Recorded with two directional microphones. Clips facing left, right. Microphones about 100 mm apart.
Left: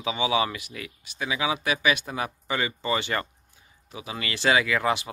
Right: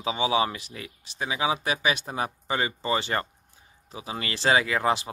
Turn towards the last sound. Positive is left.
turn(degrees=-35)  # may be behind; listen again after turning